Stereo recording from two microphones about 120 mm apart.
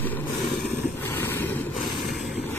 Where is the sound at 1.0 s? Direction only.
15° left (ahead or behind).